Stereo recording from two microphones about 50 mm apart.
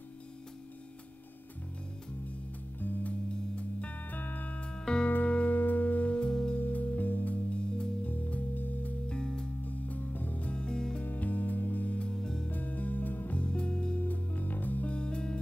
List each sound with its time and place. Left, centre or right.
2.8 s music: left; by 5.0 s centre
5.1 s music: left
6.1 s music: centre
6.6 s music: left
7.5 s music: centre
8.0 s music: left
9.1 s music: centre
9.7 s music: left; by 11.0 s centre
11.0 s music: left
12.2 s music: centre
12.4 s music: left
13.4 s music: left
13.9 s music: left
15.0 s music: centre